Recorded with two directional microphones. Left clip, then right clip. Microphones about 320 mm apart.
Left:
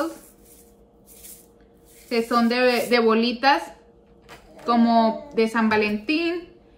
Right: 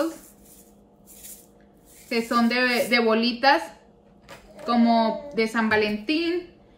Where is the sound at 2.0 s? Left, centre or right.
Centre.